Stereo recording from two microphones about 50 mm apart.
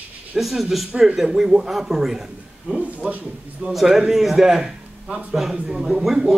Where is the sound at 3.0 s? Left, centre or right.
Right.